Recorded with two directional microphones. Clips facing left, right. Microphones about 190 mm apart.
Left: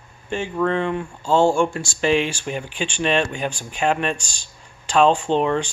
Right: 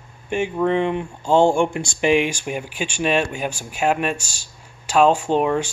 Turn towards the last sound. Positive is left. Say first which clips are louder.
# right 1 dB
turn(degrees=-10)  # may be behind; listen again after turning